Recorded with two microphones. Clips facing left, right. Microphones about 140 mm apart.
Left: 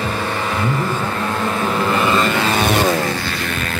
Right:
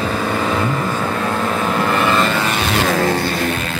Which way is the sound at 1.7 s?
Centre (ahead or behind).